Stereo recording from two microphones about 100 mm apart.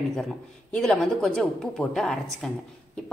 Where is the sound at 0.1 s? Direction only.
5° left (ahead or behind).